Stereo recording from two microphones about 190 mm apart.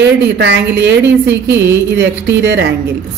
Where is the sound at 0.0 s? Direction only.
60° right (ahead or behind).